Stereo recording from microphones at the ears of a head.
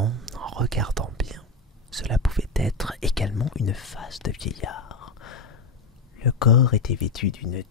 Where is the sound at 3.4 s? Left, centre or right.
Left.